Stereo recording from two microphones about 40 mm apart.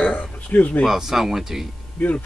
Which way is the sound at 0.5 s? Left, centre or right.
Left.